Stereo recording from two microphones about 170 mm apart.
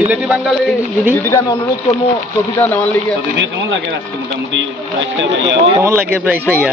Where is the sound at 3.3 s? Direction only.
90° right.